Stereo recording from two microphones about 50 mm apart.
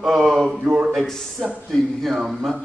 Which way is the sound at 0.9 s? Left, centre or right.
Centre.